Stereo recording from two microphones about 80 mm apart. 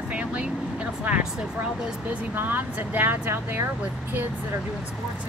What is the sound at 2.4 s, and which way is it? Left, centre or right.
Speech, right.